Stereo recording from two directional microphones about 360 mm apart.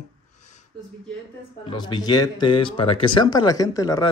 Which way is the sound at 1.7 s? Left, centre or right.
Centre.